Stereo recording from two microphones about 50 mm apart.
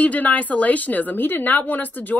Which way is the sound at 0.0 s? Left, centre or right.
Left.